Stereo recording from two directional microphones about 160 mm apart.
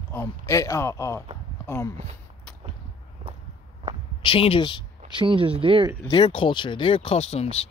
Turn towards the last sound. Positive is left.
turn(degrees=40)  # may be behind; listen again after turning